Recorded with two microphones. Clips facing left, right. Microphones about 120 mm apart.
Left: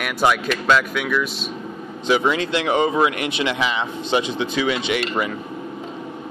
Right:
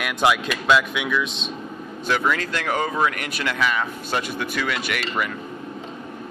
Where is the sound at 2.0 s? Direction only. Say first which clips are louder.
Left 4 dB; 15° left (ahead or behind).